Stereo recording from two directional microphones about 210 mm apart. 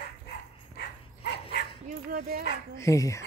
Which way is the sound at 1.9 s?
45° right (ahead or behind).